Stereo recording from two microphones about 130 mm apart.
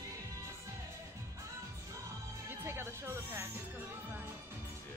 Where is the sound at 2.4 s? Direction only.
20° right (ahead or behind).